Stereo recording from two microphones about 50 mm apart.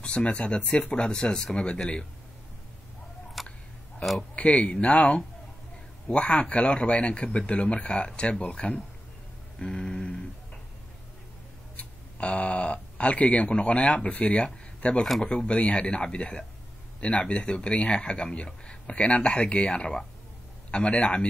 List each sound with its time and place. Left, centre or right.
0.0 s speech: left
3.4 s a sound: centre
4.4 s speech: left
11.7 s speech: left